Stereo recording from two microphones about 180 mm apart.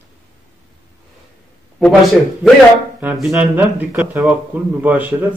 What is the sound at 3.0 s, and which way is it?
A man's voice, 10° right (ahead or behind).